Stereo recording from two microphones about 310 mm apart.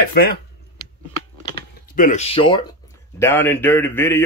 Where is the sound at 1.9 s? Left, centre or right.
Left.